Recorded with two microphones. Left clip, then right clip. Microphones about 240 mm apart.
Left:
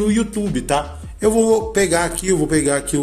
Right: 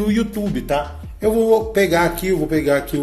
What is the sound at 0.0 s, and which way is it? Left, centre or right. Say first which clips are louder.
A man's voice: left 1 dB; centre.